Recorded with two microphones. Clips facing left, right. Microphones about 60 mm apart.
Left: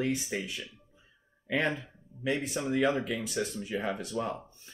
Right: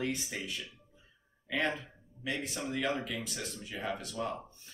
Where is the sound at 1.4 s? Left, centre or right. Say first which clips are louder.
Left 3 dB; left.